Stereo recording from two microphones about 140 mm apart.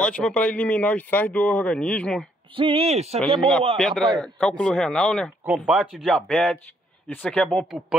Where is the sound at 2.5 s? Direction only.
40° right (ahead or behind).